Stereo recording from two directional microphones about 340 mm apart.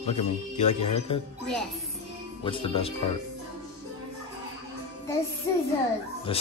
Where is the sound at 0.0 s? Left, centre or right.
Centre.